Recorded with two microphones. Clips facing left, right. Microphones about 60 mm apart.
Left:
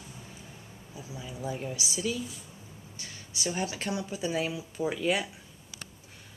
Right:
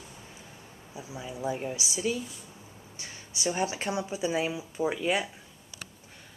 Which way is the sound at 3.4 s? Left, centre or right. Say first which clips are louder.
Right 3 dB; centre.